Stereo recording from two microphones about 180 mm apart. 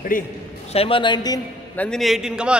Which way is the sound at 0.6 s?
30° left (ahead or behind).